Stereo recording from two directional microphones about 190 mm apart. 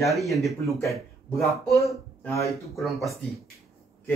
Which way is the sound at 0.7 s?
15° left (ahead or behind).